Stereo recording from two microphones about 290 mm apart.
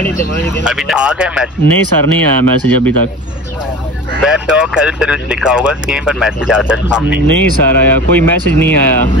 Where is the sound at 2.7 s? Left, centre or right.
Centre.